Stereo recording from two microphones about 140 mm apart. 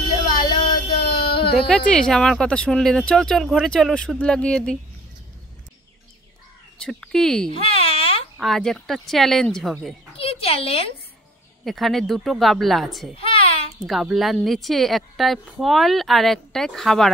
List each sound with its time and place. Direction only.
0.2 s a sound: 30° left (ahead or behind)
1.7 s a woman's voice: 5° left (ahead or behind)
6.8 s a woman's voice: 5° left (ahead or behind)
7.8 s baby cry: 40° left (ahead or behind)
8.4 s a woman's voice: centre (ahead or behind)
10.1 s a child's voice: 45° left (ahead or behind)
11.6 s a woman's voice: centre (ahead or behind)
13.1 s a sound: 40° left (ahead or behind)
13.7 s a woman's voice: centre (ahead or behind)